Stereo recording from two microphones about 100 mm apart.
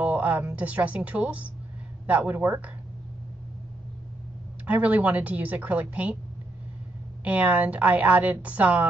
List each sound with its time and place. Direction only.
0.0 s a sound: 15° right (ahead or behind)
0.6 s a woman's voice: 15° right (ahead or behind)
4.6 s a woman's voice: 15° right (ahead or behind)
7.2 s a woman's voice: 15° right (ahead or behind)